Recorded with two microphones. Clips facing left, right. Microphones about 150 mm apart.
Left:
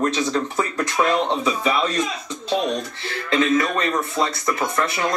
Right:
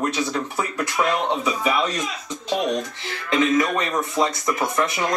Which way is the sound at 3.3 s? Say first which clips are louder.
Even; 15° right (ahead or behind).